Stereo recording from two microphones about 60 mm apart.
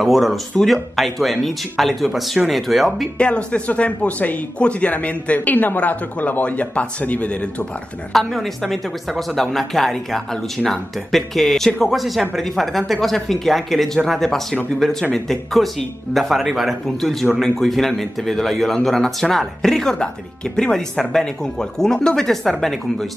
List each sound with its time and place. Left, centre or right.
0.0 s a woman's voice: centre
3.2 s speech: centre
8.1 s a woman's voice: centre